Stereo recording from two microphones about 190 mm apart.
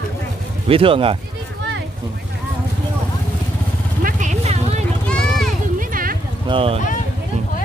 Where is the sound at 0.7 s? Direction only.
30° right (ahead or behind).